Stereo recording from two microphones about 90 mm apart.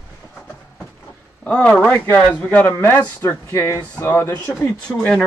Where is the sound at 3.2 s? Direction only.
30° left (ahead or behind).